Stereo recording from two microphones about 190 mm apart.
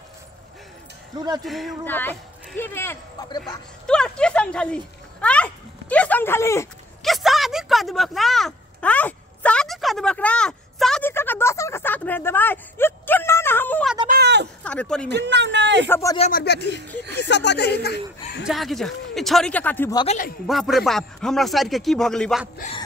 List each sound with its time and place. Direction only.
1.1 s speech: 20° right (ahead or behind)
1.4 s a man's voice: centre (ahead or behind)
1.9 s speech: 10° left (ahead or behind)
3.8 s speech: 5° left (ahead or behind)
7.0 s a sound: centre (ahead or behind)
14.0 s speech: 55° right (ahead or behind)
14.6 s speech: 5° left (ahead or behind)
15.0 s speech: 65° right (ahead or behind)
15.9 s speech: 15° left (ahead or behind)
16.3 s speech: 55° left (ahead or behind)
18.4 s a man's voice: centre (ahead or behind)
20.4 s a man's voice: centre (ahead or behind)